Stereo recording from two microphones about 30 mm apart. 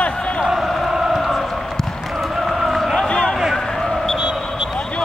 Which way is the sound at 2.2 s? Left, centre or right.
Centre.